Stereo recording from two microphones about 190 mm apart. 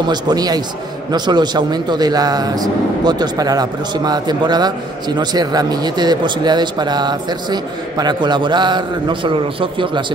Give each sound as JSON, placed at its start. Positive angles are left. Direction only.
{"t": 0.1, "sound": "a man's voice", "side_deg": -20}